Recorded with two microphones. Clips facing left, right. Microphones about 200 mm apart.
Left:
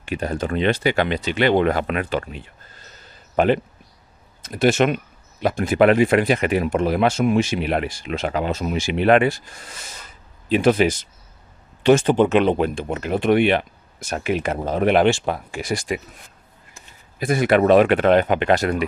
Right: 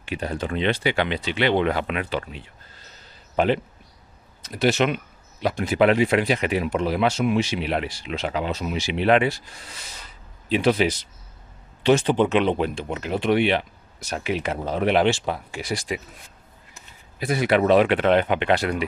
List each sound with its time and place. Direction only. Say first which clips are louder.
0.0 s speech: left 3 dB; 45° left (ahead or behind)
17.2 s speech: left 3 dB; 50° left (ahead or behind)